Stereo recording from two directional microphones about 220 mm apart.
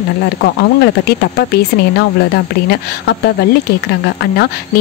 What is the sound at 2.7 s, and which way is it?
Speech, 50° left (ahead or behind).